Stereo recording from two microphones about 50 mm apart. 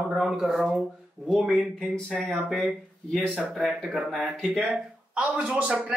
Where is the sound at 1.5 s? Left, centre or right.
Centre.